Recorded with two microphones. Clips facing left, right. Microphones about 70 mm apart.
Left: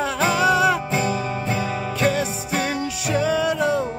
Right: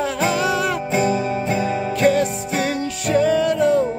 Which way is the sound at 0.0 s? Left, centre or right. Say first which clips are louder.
Even; centre.